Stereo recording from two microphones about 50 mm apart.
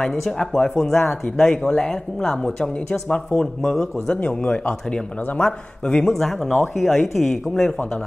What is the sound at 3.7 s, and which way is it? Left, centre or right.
Speech, centre.